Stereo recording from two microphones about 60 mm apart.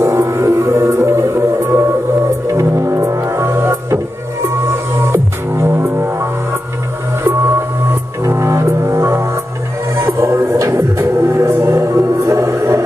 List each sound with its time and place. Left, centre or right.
0.0 s music: right
3.5 s music: right
5.1 s music: right
8.2 s music: right